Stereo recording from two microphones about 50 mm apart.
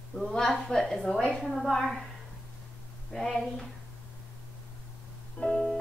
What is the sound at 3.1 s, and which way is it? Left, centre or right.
Speech, centre.